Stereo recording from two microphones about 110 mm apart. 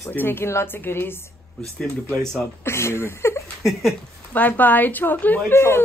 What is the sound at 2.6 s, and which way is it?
A woman's voice, 25° left (ahead or behind).